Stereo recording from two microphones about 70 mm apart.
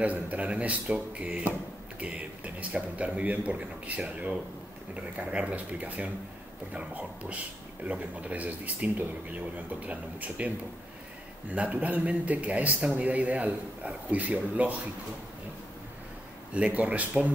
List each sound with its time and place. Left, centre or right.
0.0 s a man's voice: right
11.5 s a man's voice: centre
16.5 s a man's voice: right